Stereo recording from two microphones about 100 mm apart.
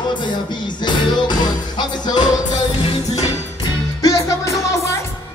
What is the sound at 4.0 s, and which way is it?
Music, 35° left (ahead or behind).